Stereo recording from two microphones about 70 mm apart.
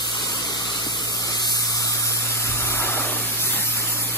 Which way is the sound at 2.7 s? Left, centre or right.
Left.